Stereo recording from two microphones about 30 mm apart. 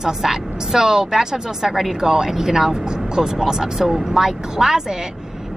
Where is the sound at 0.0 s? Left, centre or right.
Centre.